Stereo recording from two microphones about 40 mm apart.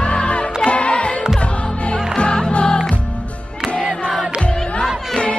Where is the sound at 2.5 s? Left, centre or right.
Left.